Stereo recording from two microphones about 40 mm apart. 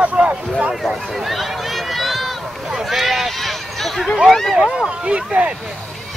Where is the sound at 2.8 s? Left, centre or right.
Centre.